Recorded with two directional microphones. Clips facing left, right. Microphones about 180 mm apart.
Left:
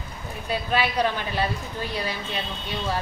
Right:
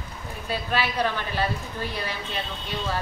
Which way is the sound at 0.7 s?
15° left (ahead or behind).